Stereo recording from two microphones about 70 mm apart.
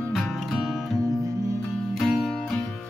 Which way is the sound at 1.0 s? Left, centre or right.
Right.